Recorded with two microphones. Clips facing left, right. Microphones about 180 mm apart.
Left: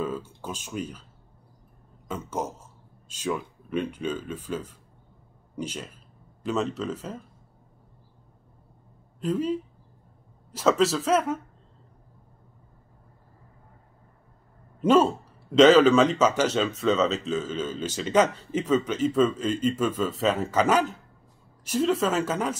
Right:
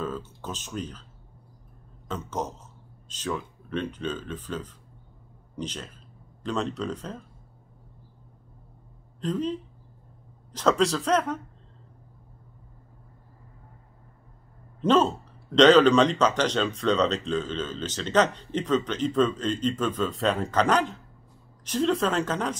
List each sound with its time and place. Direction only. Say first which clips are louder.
0.0 s a sound: left 2 dB; 10° left (ahead or behind)
2.0 s speech: left 1 dB; 10° left (ahead or behind)
9.2 s speech: left 2 dB; 10° left (ahead or behind)
14.8 s speech: left 2 dB; 10° left (ahead or behind)